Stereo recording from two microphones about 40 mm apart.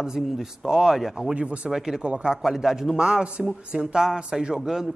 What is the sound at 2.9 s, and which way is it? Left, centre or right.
A woman's voice, right.